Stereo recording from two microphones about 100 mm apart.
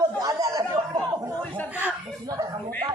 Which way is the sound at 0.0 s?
35° right (ahead or behind).